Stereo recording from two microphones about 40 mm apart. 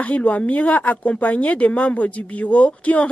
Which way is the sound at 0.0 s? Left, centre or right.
Left.